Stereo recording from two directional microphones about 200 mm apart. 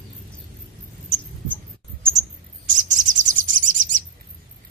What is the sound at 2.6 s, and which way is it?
Chirp, 40° right (ahead or behind).